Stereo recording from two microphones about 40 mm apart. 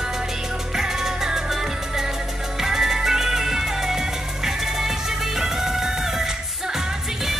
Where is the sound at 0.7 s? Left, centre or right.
Centre.